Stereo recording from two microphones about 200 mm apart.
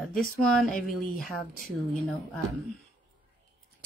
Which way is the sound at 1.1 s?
45° left (ahead or behind).